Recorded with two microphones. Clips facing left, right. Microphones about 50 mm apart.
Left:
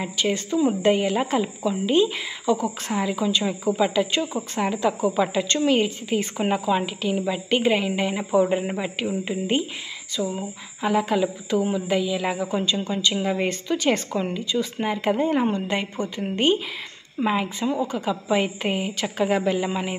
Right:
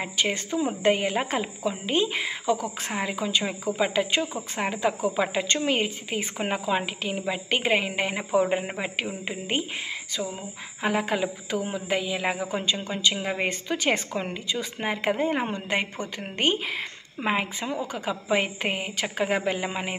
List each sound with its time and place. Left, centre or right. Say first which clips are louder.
0.0 s a woman's voice: left 2 dB; right
4.0 s a woman's voice: left 2 dB; right
10.8 s a woman's voice: left 4 dB; right